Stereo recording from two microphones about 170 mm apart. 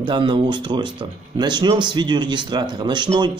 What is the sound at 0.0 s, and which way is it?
A man's voice, 30° right (ahead or behind).